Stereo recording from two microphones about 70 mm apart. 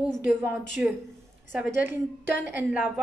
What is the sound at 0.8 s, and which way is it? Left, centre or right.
Speech, centre.